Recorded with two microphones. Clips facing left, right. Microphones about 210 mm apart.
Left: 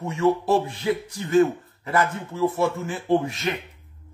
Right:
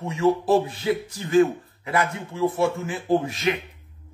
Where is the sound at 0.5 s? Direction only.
25° right (ahead or behind).